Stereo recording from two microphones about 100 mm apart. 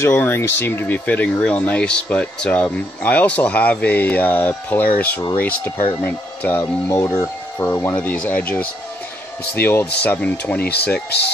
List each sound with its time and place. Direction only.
0.0 s speech: 25° left (ahead or behind)